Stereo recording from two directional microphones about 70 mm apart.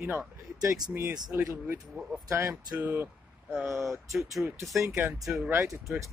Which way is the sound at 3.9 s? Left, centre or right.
Centre.